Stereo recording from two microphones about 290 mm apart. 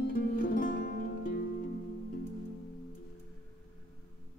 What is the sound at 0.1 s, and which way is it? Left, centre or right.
Music, left.